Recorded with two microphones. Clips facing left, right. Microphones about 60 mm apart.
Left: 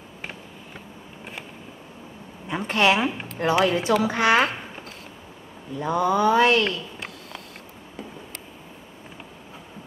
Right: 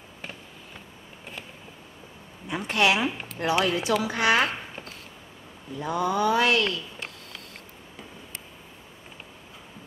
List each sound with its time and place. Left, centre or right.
2.5 s speech: left
5.8 s speech: left